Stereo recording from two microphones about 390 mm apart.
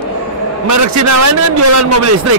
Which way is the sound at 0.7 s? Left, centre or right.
Right.